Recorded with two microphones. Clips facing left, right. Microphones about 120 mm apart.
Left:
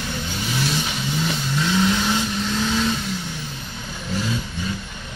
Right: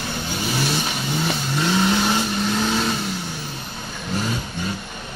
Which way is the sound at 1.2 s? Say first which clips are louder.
Right 1 dB; 45° right (ahead or behind).